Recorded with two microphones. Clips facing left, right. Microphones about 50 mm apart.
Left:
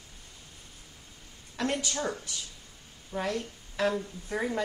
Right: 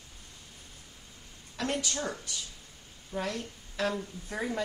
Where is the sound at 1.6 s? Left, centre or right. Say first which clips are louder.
Left 2 dB; left.